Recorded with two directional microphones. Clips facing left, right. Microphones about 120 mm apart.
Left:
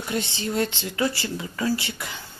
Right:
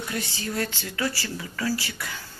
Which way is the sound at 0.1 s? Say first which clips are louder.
Left 6 dB; 20° left (ahead or behind).